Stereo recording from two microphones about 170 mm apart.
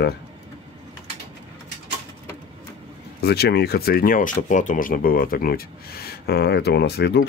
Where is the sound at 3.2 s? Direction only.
70° left (ahead or behind).